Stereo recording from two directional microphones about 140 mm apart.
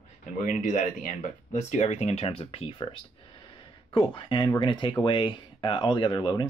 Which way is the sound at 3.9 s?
35° left (ahead or behind).